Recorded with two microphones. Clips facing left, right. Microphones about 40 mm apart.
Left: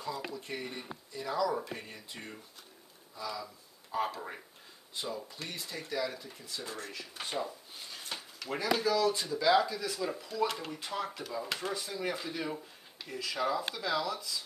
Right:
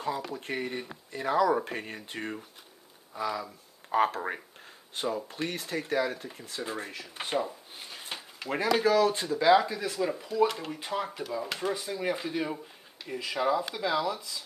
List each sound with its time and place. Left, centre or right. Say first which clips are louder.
0.3 s speech: right 6 dB; right
9.5 s speech: right 4 dB; right
10.4 s speech: right 6 dB; centre
10.7 s speech: right 4 dB; centre
11.7 s speech: right 4 dB; centre